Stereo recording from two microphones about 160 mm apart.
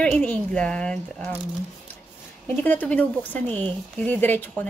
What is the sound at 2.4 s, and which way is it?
Speech, 10° left (ahead or behind).